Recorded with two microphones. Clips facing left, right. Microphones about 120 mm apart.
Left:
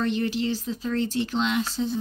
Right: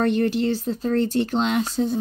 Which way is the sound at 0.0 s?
50° right (ahead or behind).